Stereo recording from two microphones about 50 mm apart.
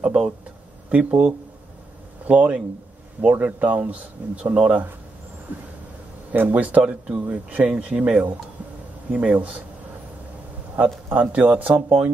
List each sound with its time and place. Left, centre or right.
0.0 s a sound: centre
0.8 s speech: right
5.5 s a sound: right
6.3 s speech: right
9.2 s speech: right
10.8 s speech: right